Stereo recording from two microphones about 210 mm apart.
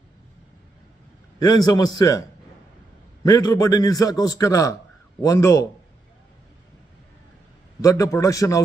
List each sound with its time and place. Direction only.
1.4 s a man's voice: 20° left (ahead or behind)
3.3 s a man's voice: 15° left (ahead or behind)
7.8 s a man's voice: 15° left (ahead or behind)